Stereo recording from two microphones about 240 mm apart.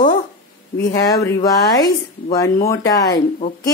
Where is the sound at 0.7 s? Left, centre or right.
Left.